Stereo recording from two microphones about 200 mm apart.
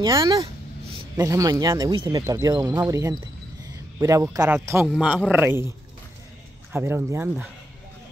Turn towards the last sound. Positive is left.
turn(degrees=-10)  # may be behind; listen again after turning